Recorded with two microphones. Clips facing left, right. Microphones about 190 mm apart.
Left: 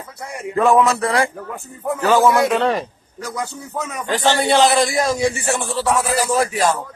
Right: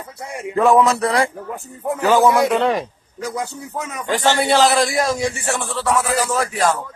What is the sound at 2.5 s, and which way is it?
Speech, 10° right (ahead or behind).